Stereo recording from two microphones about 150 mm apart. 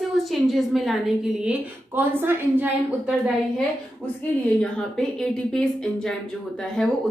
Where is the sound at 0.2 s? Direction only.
Centre (ahead or behind).